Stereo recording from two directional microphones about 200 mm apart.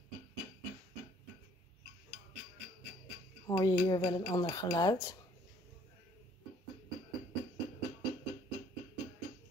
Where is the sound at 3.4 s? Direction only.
20° left (ahead or behind).